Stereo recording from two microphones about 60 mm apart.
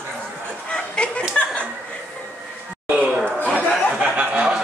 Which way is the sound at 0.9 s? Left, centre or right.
Centre.